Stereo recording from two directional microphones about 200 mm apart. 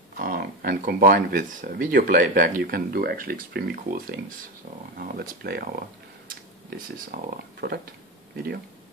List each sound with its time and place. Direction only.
0.2 s speech: 50° right (ahead or behind)